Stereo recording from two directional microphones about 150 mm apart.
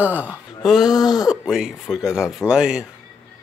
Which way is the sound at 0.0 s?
10° right (ahead or behind).